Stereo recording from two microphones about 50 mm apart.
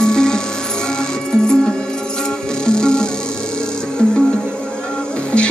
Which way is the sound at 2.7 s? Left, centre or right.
Centre.